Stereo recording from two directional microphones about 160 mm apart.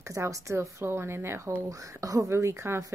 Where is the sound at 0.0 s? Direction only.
20° right (ahead or behind).